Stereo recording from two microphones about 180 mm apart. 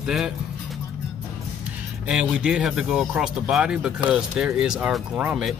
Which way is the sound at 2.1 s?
5° right (ahead or behind).